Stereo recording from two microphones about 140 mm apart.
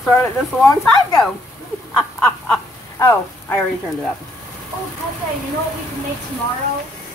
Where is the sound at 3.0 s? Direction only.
20° left (ahead or behind).